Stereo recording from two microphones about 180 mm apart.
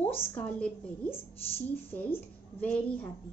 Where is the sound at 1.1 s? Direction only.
30° left (ahead or behind).